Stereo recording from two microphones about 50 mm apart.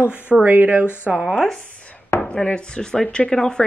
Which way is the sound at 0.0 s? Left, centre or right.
Right.